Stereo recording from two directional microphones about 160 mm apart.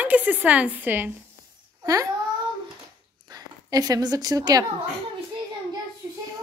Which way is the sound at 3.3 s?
25° right (ahead or behind).